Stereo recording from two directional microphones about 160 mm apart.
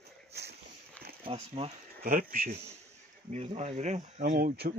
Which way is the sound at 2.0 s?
60° right (ahead or behind).